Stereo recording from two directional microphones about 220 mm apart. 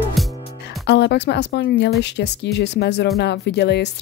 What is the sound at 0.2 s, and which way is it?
Music, centre (ahead or behind).